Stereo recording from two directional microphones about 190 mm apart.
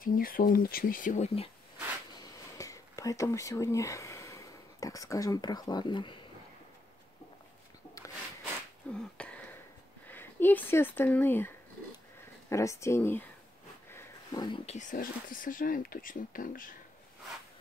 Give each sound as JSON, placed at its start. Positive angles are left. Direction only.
{"t": 0.0, "sound": "speech", "side_deg": 50}
{"t": 2.5, "sound": "speech", "side_deg": 15}
{"t": 8.9, "sound": "a sound", "side_deg": 5}
{"t": 10.0, "sound": "speech", "side_deg": 10}
{"t": 13.8, "sound": "a sound", "side_deg": 15}
{"t": 14.7, "sound": "speech", "side_deg": 40}